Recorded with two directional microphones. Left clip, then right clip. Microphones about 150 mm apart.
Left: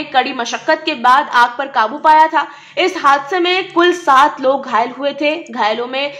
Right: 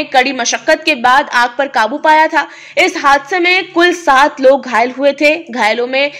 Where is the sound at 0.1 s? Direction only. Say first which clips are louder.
Right 3 dB; 45° right (ahead or behind).